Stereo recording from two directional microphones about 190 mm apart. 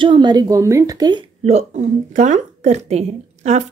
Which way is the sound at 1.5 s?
35° right (ahead or behind).